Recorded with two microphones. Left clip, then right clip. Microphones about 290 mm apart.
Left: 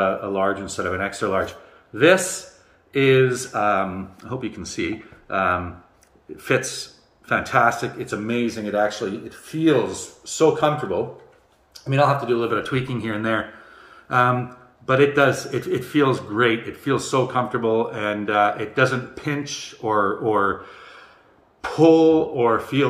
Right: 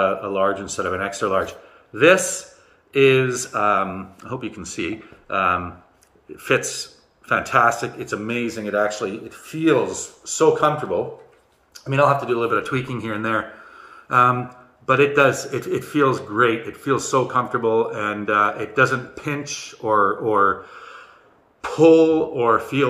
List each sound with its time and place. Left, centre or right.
0.0 s speech: centre
2.9 s speech: centre